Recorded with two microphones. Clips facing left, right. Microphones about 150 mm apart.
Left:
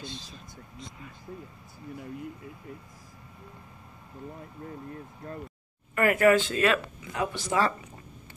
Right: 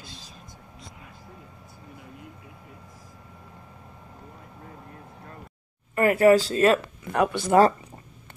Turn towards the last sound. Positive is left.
turn(degrees=-50)  # may be behind; listen again after turning